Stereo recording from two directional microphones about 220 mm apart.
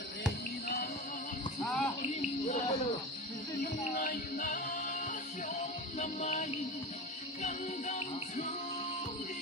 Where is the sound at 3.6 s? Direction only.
35° left (ahead or behind).